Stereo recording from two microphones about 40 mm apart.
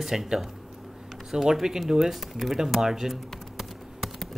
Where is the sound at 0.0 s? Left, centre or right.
Centre.